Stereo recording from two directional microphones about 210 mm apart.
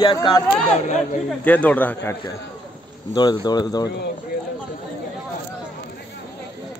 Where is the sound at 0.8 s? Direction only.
35° left (ahead or behind).